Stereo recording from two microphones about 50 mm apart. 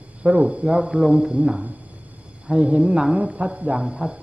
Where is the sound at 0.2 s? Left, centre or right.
Right.